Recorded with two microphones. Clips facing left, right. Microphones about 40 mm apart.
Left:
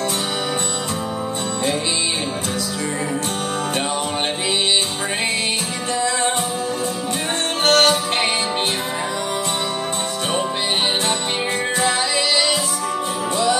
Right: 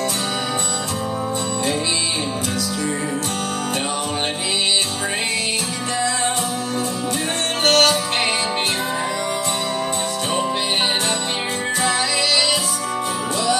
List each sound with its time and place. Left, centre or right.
7.6 s music: left